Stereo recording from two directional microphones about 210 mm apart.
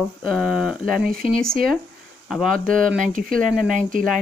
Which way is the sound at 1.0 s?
45° right (ahead or behind).